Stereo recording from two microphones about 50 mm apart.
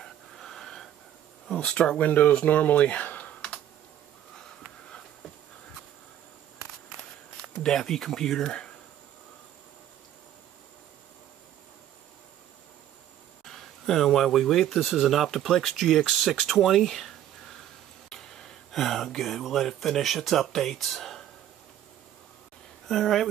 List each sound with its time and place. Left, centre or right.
0.0 s a sound: centre
1.5 s speech: centre
2.0 s speech: left
3.2 s computer keyboard: left
7.6 s speech: centre
8.5 s speech: centre
13.5 s speech: centre
22.8 s speech: centre